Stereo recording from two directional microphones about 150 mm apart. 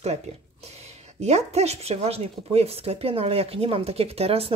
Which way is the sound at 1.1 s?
45° right (ahead or behind).